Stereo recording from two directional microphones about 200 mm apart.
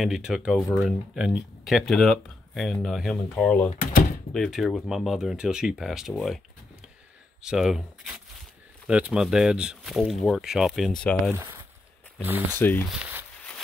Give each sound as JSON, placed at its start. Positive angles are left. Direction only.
{"t": 0.0, "sound": "speech", "side_deg": 0}
{"t": 3.7, "sound": "speech", "side_deg": 40}
{"t": 4.3, "sound": "speech", "side_deg": 0}
{"t": 7.4, "sound": "speech", "side_deg": 0}
{"t": 11.3, "sound": "speech", "side_deg": -15}
{"t": 12.5, "sound": "speech", "side_deg": 10}
{"t": 12.9, "sound": "speech", "side_deg": -5}